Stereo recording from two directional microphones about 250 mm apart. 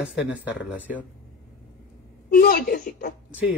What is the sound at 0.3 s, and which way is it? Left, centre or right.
Speech, centre.